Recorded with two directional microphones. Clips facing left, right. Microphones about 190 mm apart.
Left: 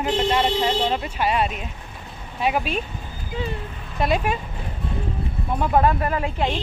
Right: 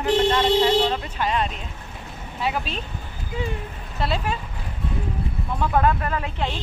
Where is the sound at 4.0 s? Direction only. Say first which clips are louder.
Left 4 dB; 15° left (ahead or behind).